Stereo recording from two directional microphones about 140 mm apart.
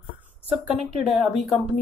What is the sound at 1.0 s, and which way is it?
Speech, centre (ahead or behind).